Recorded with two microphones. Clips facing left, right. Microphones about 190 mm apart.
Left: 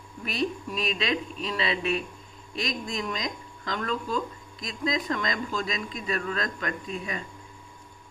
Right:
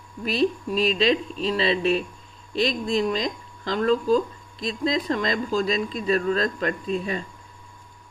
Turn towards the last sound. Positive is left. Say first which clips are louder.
# right 7 dB
turn(degrees=-30)  # may be behind; listen again after turning